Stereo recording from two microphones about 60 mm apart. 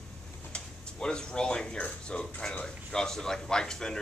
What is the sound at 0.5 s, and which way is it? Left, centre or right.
Speech, centre.